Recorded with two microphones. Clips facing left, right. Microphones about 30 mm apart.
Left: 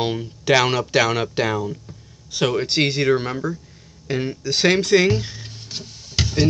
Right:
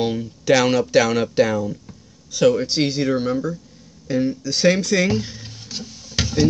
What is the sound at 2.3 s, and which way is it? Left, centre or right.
Speech, left.